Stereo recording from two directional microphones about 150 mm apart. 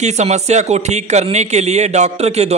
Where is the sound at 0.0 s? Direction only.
50° right (ahead or behind).